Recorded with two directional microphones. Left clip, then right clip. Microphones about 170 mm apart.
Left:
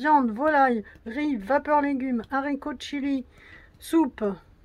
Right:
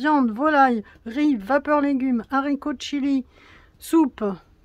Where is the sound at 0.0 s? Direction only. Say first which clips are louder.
Right 1 dB; 35° right (ahead or behind).